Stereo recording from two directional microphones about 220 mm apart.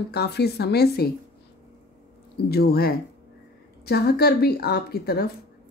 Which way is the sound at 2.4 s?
45° left (ahead or behind).